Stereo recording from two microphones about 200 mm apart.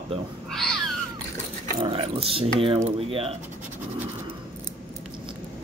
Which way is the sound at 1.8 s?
30° right (ahead or behind).